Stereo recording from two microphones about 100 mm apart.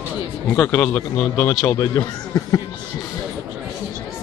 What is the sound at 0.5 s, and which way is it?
A man's voice, 20° left (ahead or behind).